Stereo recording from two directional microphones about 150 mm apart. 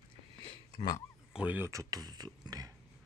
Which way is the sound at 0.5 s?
35° left (ahead or behind).